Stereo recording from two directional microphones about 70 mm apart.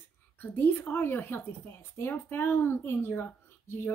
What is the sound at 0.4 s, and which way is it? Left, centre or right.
Speech, left.